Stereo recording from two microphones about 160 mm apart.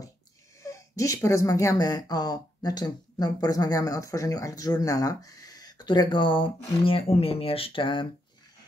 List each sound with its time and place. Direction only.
0.6 s speech: 20° left (ahead or behind)